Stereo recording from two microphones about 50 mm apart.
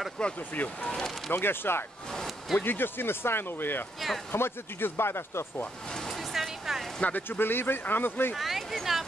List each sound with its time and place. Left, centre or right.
0.2 s speech: centre
1.3 s speech: left
6.3 s a sound: centre
7.0 s speech: left
7.2 s speech: left
8.4 s a sound: centre